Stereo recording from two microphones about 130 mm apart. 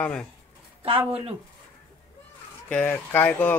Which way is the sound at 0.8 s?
45° right (ahead or behind).